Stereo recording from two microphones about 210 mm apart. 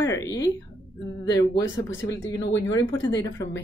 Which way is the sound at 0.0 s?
15° left (ahead or behind).